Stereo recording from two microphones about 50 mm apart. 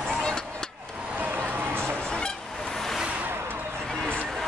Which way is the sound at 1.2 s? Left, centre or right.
Right.